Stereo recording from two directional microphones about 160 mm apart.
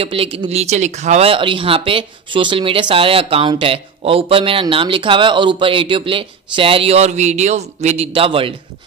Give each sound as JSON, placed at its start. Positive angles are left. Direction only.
{"t": 0.0, "sound": "speech", "side_deg": -35}